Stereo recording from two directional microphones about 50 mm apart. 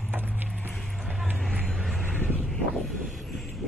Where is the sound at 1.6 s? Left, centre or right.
Centre.